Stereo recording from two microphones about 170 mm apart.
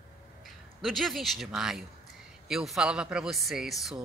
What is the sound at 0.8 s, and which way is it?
A woman's voice, centre (ahead or behind).